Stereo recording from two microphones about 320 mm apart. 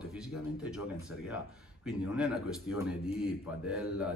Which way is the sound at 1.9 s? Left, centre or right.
Centre.